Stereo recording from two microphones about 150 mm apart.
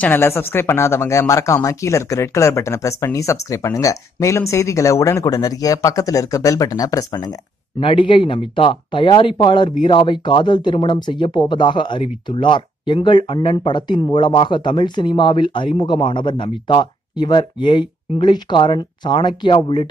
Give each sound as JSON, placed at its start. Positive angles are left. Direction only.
{"t": 0.0, "sound": "speech", "side_deg": 15}
{"t": 7.8, "sound": "speech", "side_deg": 35}